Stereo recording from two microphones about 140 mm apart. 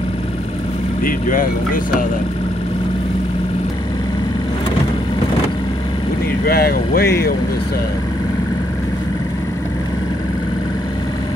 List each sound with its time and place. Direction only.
1.0 s speech: 90° left
6.4 s speech: 90° left